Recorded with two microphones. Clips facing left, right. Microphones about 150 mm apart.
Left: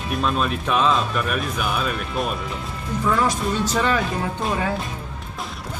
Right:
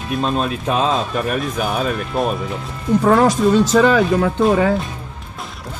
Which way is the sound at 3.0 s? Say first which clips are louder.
Right 7 dB; 65° right (ahead or behind).